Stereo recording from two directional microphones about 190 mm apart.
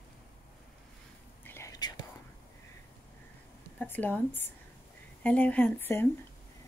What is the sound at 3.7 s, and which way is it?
Speech, 10° left (ahead or behind).